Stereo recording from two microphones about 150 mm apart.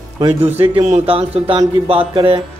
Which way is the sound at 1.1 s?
35° right (ahead or behind).